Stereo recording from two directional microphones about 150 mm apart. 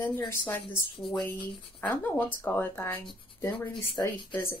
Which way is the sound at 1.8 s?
15° left (ahead or behind).